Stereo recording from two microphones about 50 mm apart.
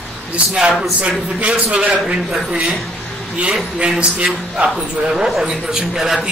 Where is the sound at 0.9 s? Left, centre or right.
Right.